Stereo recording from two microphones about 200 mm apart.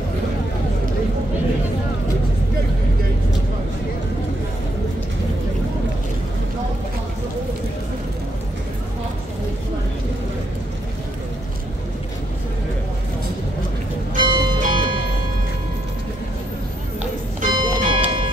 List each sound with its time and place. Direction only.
14.1 s music: 20° right (ahead or behind)
17.5 s music: 20° right (ahead or behind)